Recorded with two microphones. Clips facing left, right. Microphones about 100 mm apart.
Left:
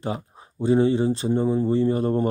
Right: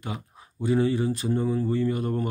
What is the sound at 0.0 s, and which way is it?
Speech, 30° left (ahead or behind).